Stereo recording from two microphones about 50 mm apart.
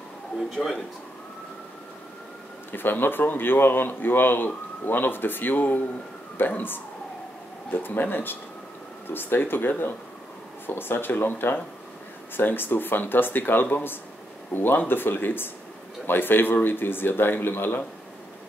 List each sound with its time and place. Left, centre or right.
0.6 s speech: left
2.7 s speech: left